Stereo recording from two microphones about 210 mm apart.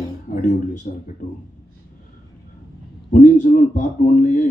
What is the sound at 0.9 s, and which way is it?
Speech, 35° left (ahead or behind).